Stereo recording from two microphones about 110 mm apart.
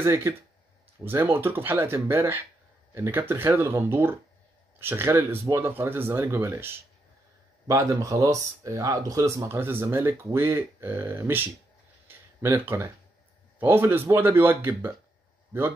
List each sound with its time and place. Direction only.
0.0 s speech: 25° right (ahead or behind)
12.1 s a sound: 20° right (ahead or behind)
13.6 s speech: 20° right (ahead or behind)